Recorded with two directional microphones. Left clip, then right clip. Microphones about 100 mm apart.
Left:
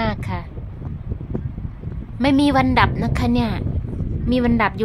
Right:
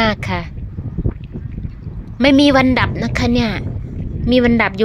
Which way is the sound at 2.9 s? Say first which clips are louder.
Right 4 dB; 25° right (ahead or behind).